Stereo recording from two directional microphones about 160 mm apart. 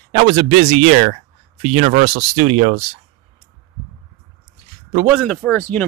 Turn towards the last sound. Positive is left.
turn(degrees=15)  # may be behind; listen again after turning